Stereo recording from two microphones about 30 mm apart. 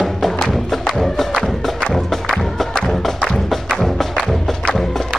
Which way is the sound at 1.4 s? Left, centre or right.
Left.